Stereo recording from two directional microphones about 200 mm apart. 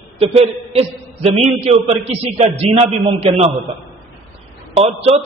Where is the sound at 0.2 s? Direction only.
30° right (ahead or behind).